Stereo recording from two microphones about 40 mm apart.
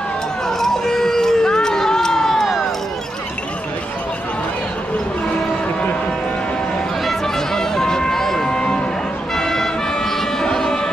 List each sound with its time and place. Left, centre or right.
0.5 s a sound: centre
7.3 s music: centre
8.5 s music: left
9.3 s vehicle: centre